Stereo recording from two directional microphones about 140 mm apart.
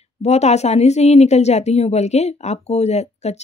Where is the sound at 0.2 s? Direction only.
50° left (ahead or behind).